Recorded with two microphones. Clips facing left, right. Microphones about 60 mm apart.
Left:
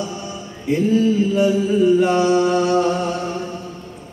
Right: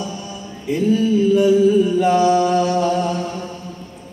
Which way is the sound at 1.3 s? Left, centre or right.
Centre.